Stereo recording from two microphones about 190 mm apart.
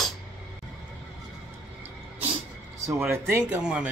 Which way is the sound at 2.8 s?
10° right (ahead or behind).